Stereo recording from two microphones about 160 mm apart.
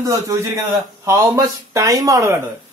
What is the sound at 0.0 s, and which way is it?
Speech, 20° right (ahead or behind).